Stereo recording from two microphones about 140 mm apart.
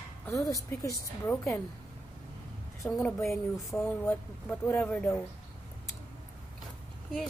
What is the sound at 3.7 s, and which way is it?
Speech, 15° left (ahead or behind).